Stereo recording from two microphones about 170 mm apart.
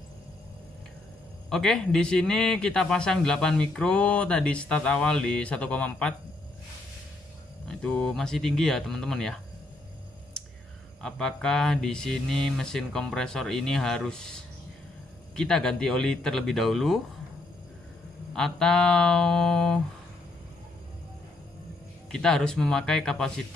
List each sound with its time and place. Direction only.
1.5 s a man's voice: 5° left (ahead or behind)
7.6 s a man's voice: 5° left (ahead or behind)
10.4 s a sound: 5° left (ahead or behind)
11.0 s a man's voice: 5° left (ahead or behind)
18.3 s a man's voice: 5° left (ahead or behind)
22.1 s a man's voice: 5° left (ahead or behind)